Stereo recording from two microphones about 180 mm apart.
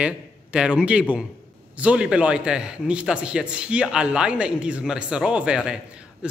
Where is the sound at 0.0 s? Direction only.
5° right (ahead or behind).